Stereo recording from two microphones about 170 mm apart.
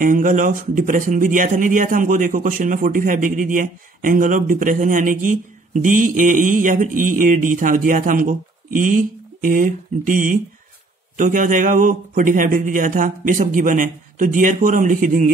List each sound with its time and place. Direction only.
0.0 s speech: 50° right (ahead or behind)